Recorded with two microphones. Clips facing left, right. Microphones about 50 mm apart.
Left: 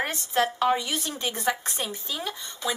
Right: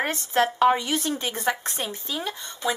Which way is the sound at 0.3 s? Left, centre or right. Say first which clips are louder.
Right 4 dB; centre.